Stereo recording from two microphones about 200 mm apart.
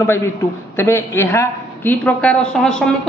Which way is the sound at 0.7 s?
10° left (ahead or behind).